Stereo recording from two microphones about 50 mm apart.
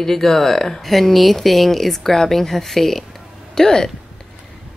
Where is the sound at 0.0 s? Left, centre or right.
Centre.